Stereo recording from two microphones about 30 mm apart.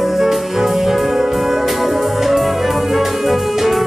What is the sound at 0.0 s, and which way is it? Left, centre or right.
Music, centre.